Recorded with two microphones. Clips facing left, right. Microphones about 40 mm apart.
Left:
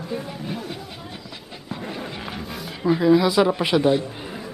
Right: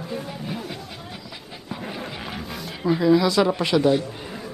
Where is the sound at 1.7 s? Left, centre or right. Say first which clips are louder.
Left 1 dB; centre.